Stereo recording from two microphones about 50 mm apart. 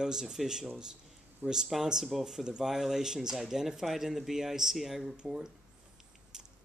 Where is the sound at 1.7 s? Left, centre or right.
Centre.